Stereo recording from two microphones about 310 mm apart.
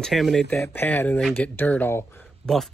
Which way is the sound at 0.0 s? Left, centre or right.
Centre.